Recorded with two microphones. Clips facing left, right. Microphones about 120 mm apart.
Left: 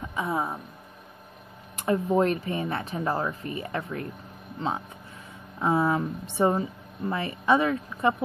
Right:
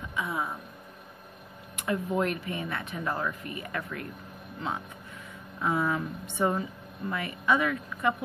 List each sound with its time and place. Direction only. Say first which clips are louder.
0.1 s speech: left 4 dB; 35° left (ahead or behind)
1.8 s speech: left 5 dB; 35° left (ahead or behind)